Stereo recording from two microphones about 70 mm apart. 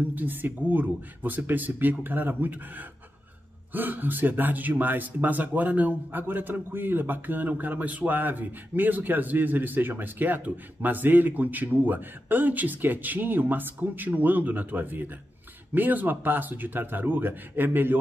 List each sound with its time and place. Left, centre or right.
0.1 s speech: right